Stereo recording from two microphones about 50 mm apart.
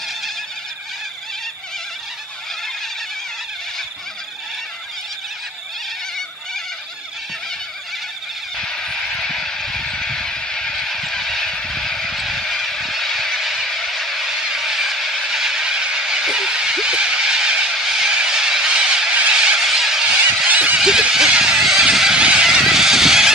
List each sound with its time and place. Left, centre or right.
8.5 s vehicle: centre
9.8 s a sound: centre
20.4 s honk: right
20.7 s a sound: centre
21.0 s vehicle: centre
21.6 s honk: centre